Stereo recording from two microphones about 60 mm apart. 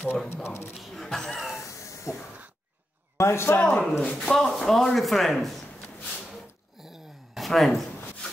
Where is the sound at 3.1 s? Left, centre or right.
Left.